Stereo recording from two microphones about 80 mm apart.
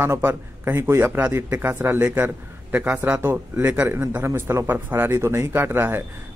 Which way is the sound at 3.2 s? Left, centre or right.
Right.